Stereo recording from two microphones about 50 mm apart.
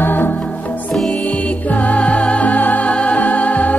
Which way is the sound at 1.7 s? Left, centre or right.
Left.